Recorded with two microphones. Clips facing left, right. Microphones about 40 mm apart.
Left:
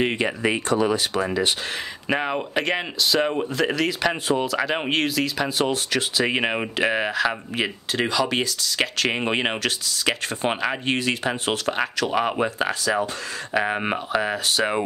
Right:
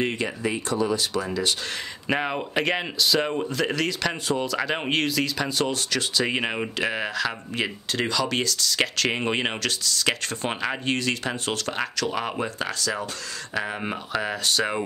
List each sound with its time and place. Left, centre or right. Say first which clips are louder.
0.4 s speech: left 4 dB; left
2.0 s speech: left 1 dB; centre
4.1 s speech: left 3 dB; centre
4.5 s speech: left 2 dB; centre; by 13.9 s left
14.1 s speech: left 1 dB; centre